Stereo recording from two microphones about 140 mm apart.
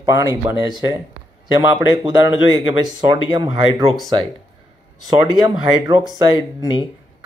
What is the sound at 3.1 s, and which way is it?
Speech, 30° right (ahead or behind).